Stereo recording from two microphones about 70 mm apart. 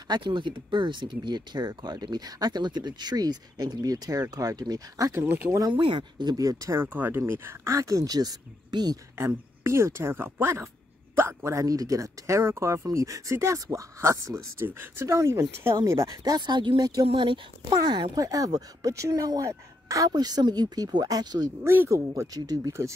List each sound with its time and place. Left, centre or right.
1.0 s speech: right
5.2 s speech: right
5.7 s speech: right
6.3 s speech: right
6.8 s speech: right
9.1 s speech: right
14.6 s speech: right
18.2 s speech: right
20.1 s speech: right
21.6 s speech: right
22.7 s speech: right